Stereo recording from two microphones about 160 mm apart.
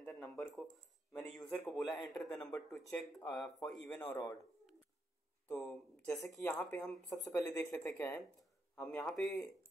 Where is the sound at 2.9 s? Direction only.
5° left (ahead or behind).